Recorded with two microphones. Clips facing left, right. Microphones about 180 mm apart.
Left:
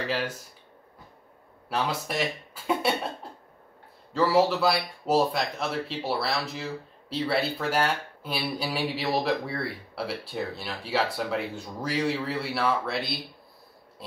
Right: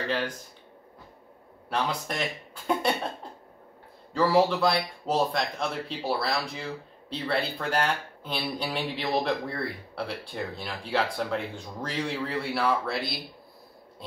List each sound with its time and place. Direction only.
1.7 s speech: 5° left (ahead or behind)
4.1 s speech: centre (ahead or behind)